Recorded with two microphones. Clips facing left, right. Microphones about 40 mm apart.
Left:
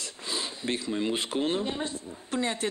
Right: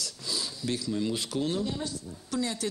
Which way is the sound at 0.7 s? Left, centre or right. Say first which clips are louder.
Left 1 dB; left.